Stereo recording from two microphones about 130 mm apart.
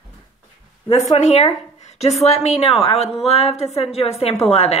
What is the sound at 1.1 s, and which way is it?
A woman's voice, 55° left (ahead or behind).